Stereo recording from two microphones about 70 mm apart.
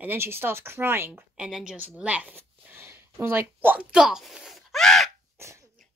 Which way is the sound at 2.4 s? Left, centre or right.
Right.